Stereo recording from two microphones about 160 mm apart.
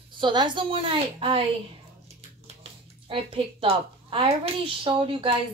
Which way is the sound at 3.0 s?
35° right (ahead or behind).